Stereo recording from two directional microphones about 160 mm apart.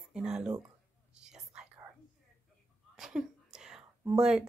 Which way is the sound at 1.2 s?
5° right (ahead or behind).